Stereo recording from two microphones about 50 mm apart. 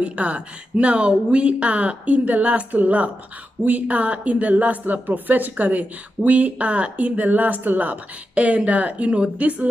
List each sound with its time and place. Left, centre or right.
0.0 s speech: right